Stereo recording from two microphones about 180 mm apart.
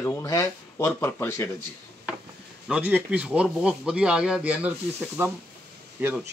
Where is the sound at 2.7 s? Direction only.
10° right (ahead or behind).